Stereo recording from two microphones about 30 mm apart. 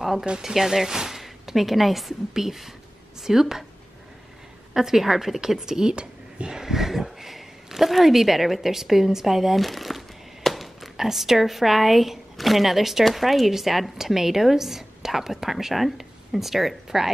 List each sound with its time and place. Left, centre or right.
0.4 s a woman's voice: centre
4.7 s a woman's voice: centre
5.9 s a sound: right
6.5 s speech: centre
9.7 s crumpling: centre
11.0 s a woman's voice: centre